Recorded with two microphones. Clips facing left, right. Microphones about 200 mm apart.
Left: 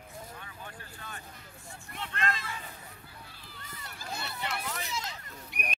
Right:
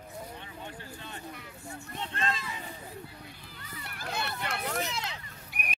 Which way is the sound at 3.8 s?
65° right (ahead or behind).